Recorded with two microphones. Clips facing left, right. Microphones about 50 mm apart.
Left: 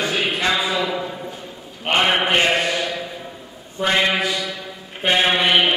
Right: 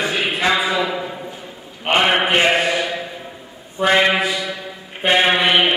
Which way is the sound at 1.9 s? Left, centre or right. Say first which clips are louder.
Right 2 dB; centre.